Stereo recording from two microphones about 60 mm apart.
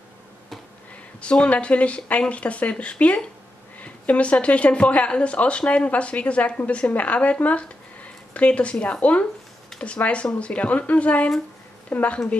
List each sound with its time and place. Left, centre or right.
1.2 s speech: centre